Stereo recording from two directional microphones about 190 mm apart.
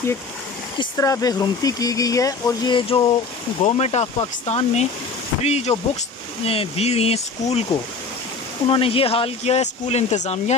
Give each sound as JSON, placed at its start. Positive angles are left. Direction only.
{"t": 0.7, "sound": "speech", "side_deg": 15}
{"t": 3.6, "sound": "speech", "side_deg": 35}
{"t": 8.6, "sound": "speech", "side_deg": 30}